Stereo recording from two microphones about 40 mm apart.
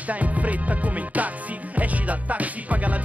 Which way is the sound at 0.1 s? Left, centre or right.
Right.